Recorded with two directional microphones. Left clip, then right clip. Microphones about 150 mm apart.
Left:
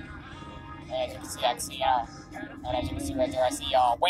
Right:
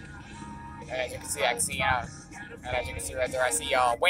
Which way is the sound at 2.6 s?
25° right (ahead or behind).